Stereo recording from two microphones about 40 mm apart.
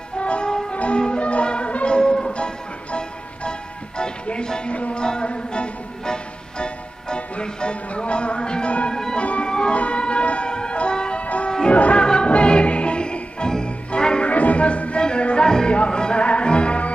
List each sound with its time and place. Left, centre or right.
0.2 s music: left
2.0 s music: centre
4.0 s music: left
8.9 s music: centre
9.2 s music: left
9.5 s music: left
11.7 s music: left
12.0 s music: left
14.3 s music: left